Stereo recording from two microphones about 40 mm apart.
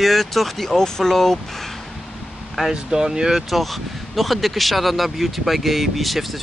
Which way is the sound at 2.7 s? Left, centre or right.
Centre.